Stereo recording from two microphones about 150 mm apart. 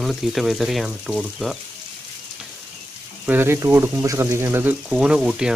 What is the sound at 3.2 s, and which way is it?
Speech, 15° right (ahead or behind).